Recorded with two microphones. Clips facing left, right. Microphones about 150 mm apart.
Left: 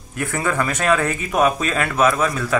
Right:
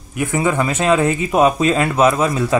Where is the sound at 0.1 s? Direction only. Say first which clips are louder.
Right 5 dB; 15° right (ahead or behind).